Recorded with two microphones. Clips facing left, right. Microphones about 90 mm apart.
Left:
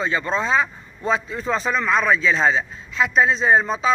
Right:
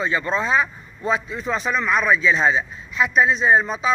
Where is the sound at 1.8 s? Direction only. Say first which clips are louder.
Right 1 dB; 30° left (ahead or behind).